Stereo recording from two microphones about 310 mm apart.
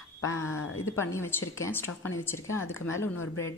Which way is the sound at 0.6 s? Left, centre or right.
Left.